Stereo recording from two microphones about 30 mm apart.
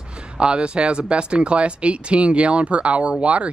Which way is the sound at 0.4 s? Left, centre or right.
Right.